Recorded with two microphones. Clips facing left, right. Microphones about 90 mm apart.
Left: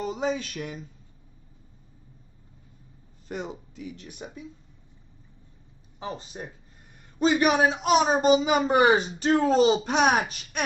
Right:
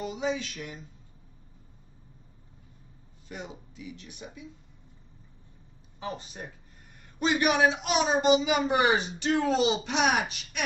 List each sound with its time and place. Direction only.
0.0 s a sound: 40° left (ahead or behind)
3.3 s speech: 45° left (ahead or behind)
5.9 s a man's voice: 30° left (ahead or behind)